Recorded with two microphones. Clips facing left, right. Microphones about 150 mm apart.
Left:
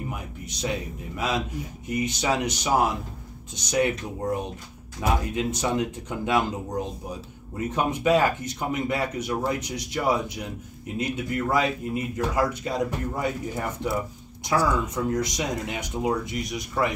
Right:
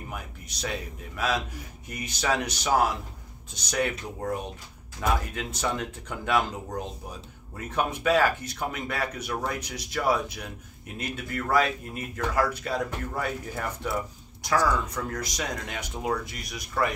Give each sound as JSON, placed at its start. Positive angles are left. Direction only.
{"t": 0.1, "sound": "a man's voice", "side_deg": 20}
{"t": 7.5, "sound": "a man's voice", "side_deg": 20}